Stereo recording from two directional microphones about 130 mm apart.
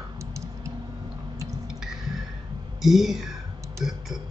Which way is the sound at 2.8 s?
Centre (ahead or behind).